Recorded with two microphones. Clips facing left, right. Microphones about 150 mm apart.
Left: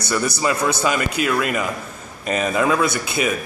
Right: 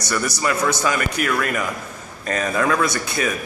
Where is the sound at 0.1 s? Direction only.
20° left (ahead or behind).